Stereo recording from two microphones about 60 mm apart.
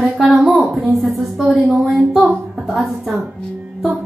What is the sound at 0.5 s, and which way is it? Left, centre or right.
A woman's voice, centre.